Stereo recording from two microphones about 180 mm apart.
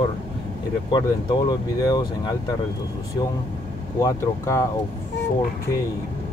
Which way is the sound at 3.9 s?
15° left (ahead or behind).